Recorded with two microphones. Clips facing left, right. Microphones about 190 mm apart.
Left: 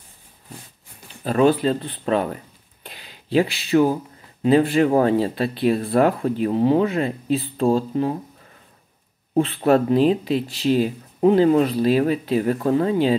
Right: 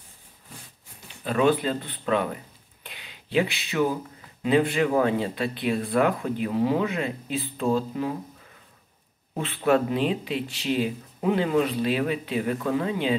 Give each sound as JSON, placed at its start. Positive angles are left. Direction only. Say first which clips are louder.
{"t": 1.2, "sound": "speech", "louder": "left 5 dB", "side_deg": 35}
{"t": 2.8, "sound": "a sound", "louder": "left 4 dB", "side_deg": 35}
{"t": 4.4, "sound": "speech", "louder": "left 5 dB", "side_deg": 35}
{"t": 9.4, "sound": "speech", "louder": "left 5 dB", "side_deg": 35}